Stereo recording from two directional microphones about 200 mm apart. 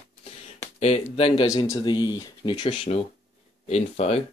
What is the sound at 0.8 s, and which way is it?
Speech, 30° left (ahead or behind).